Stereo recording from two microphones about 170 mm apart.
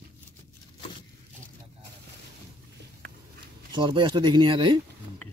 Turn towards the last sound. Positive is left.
turn(degrees=-25)  # may be behind; listen again after turning